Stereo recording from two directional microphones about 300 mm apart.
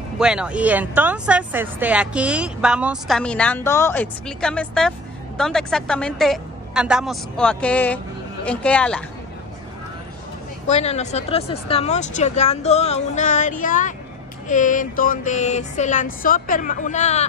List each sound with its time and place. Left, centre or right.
0.2 s speech: centre
10.7 s speech: left